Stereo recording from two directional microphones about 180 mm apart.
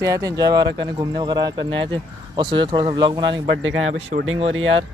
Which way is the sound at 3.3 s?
90° right.